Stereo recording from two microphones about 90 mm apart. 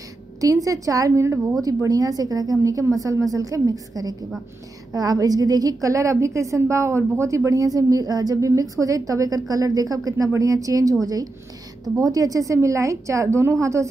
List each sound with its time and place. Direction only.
0.4 s a woman's voice: 40° right (ahead or behind)